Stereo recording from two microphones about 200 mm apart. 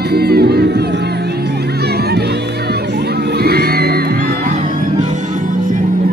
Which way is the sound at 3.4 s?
55° right (ahead or behind).